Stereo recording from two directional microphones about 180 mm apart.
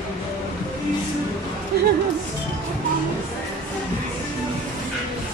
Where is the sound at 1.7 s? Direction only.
60° right (ahead or behind).